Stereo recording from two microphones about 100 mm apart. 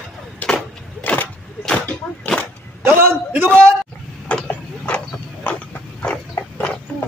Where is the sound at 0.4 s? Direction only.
15° left (ahead or behind).